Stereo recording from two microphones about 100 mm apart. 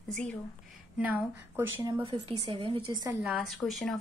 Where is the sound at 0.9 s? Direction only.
15° right (ahead or behind).